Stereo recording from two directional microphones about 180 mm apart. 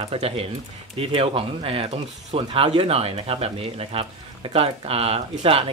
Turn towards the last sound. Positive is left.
turn(degrees=-35)  # may be behind; listen again after turning